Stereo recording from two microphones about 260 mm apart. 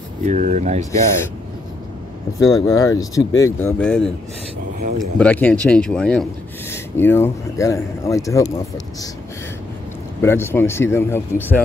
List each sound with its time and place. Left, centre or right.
0.2 s speech: right
0.9 s speech: centre
2.6 s speech: centre
5.2 s speech: centre
10.2 s speech: centre